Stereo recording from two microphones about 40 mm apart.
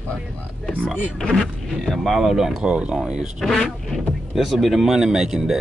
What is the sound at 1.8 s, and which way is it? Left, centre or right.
Speech, centre.